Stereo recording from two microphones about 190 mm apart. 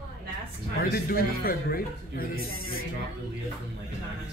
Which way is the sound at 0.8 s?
50° left (ahead or behind).